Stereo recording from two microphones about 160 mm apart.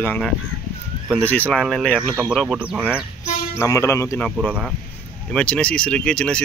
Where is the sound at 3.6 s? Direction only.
20° left (ahead or behind).